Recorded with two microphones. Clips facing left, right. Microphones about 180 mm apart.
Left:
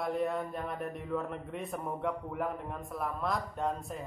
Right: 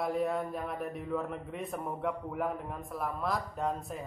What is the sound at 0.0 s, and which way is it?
A man's voice, centre (ahead or behind).